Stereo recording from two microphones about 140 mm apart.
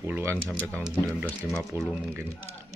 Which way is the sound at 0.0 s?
15° right (ahead or behind).